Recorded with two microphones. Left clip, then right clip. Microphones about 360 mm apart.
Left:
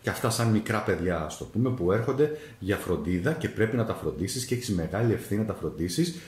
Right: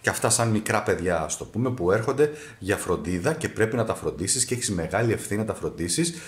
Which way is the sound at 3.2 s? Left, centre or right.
Centre.